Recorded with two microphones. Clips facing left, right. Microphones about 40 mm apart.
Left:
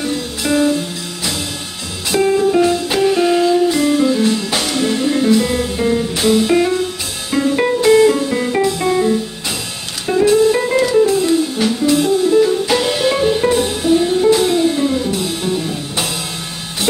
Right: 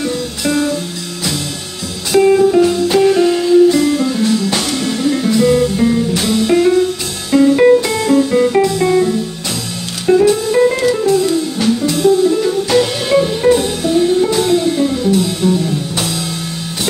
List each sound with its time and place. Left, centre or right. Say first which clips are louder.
0.0 s music: right 2 dB; centre
8.3 s music: right 4 dB; centre